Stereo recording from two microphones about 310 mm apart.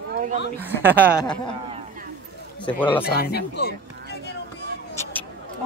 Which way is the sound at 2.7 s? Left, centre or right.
Centre.